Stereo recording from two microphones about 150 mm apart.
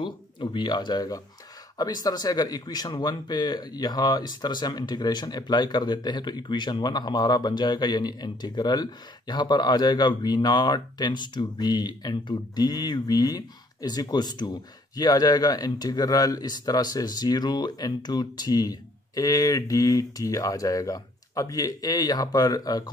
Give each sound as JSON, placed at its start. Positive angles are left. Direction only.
{"t": 0.0, "sound": "speech", "side_deg": 35}